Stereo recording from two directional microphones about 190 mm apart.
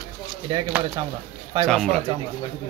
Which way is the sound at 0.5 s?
25° right (ahead or behind).